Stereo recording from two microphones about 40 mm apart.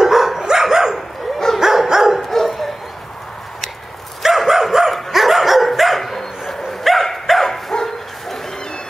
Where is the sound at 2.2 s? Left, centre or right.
Centre.